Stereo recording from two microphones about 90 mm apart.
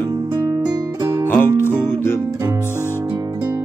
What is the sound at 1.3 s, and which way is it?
Music, 25° left (ahead or behind).